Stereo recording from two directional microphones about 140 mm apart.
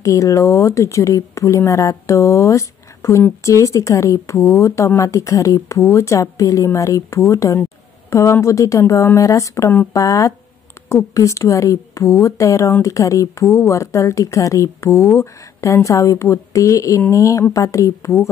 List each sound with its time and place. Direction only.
0.0 s speech: 25° left (ahead or behind)